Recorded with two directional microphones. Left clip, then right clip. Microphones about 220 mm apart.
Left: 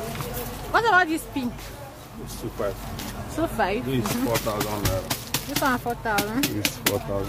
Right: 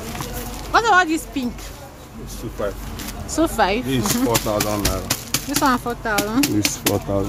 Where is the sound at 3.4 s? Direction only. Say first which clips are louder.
Right 6 dB; 20° right (ahead or behind).